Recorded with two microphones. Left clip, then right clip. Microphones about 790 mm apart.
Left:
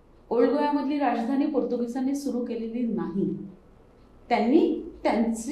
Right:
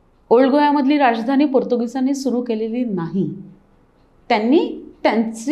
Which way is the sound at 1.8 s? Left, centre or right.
Right.